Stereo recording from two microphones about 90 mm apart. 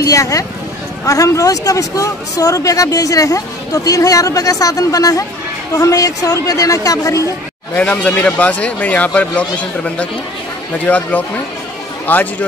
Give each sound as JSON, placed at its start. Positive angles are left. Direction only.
{"t": 0.0, "sound": "speech", "side_deg": 40}
{"t": 7.7, "sound": "speech", "side_deg": 15}